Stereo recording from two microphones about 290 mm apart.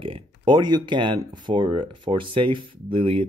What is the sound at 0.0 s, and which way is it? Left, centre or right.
Speech, centre.